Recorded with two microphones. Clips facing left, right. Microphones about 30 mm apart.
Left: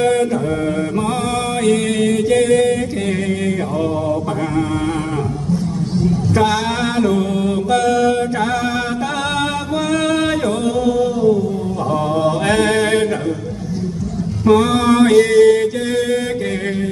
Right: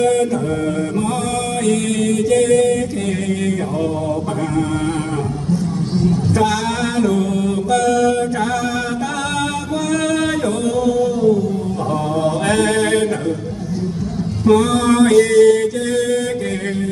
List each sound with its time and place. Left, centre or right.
0.0 s mantra: left
1.7 s music: left
6.3 s mantra: left
10.8 s a sound: left
14.4 s mantra: left